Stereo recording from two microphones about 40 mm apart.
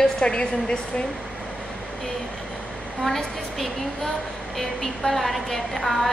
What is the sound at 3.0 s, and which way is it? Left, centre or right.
A woman's voice, centre.